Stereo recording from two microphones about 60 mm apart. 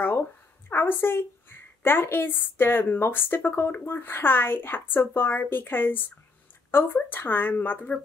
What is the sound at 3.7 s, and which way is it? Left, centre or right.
Speech, left.